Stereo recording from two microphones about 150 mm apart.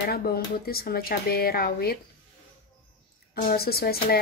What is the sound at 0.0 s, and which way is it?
Speech, 85° left.